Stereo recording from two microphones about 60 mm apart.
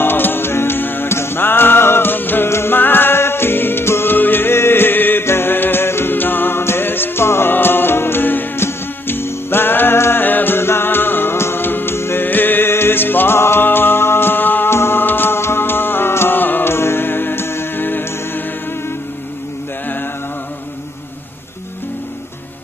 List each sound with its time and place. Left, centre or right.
0.0 s music: left